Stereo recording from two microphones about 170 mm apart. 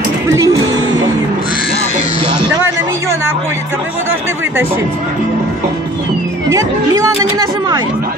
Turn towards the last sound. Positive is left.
turn(degrees=-20)  # may be behind; listen again after turning